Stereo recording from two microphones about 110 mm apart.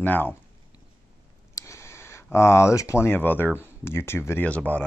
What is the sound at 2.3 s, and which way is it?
Speech, 25° left (ahead or behind).